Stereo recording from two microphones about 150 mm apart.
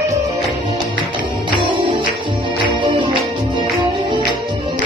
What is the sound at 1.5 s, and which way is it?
Music, 35° right (ahead or behind).